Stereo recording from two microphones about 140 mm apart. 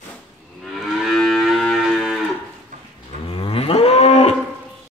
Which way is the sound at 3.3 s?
45° left (ahead or behind).